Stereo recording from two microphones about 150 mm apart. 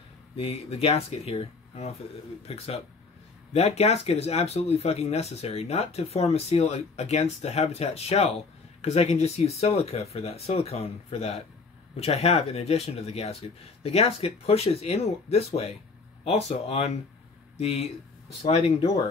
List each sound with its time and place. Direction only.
0.4 s speech: 40° left (ahead or behind)